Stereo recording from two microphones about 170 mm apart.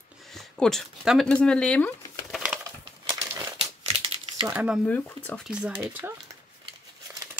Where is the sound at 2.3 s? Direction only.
5° right (ahead or behind).